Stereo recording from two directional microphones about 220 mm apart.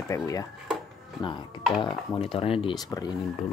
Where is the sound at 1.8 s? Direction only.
25° left (ahead or behind).